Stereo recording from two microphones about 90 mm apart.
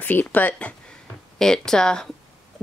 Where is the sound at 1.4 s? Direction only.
5° left (ahead or behind).